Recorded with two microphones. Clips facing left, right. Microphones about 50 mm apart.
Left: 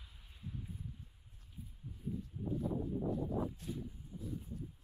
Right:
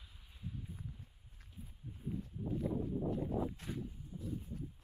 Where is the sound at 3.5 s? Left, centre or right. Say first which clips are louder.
Even; right.